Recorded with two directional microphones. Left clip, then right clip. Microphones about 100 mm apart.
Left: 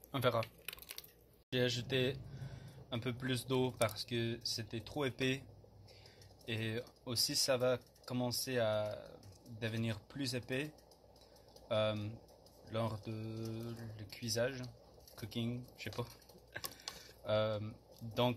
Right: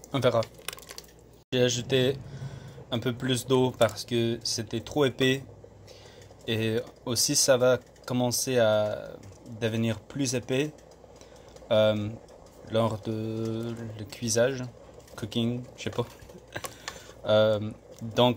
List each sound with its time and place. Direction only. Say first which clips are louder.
0.1 s speech: right 10 dB; 35° right (ahead or behind)
1.5 s speech: right 11 dB; 30° right (ahead or behind); by 5.4 s 45° right (ahead or behind)
6.4 s speech: right 13 dB; 50° right (ahead or behind)
16.5 s a sound: right 9 dB; 50° right (ahead or behind)
17.2 s speech: right 13 dB; 45° right (ahead or behind)